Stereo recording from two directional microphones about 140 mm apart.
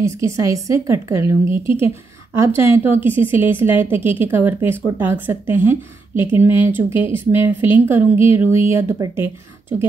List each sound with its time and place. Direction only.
0.0 s a woman's voice: 20° right (ahead or behind)